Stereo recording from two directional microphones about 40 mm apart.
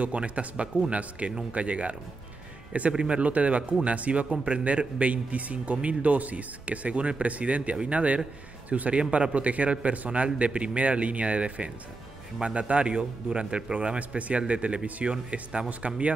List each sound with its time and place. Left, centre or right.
0.0 s a man's voice: right
2.9 s a man's voice: right
13.7 s a man's voice: right